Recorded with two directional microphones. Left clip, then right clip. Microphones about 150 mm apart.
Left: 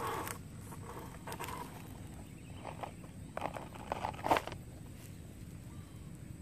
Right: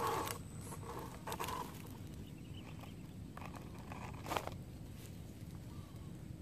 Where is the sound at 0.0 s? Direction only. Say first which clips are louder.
Right 1 dB; 25° right (ahead or behind).